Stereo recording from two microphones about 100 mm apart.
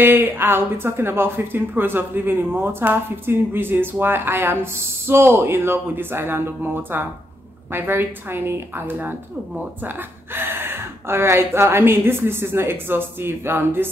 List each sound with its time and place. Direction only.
0.0 s speech: 20° right (ahead or behind)